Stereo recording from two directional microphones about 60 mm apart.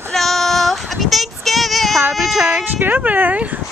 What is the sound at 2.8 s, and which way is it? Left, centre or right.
Speech, right.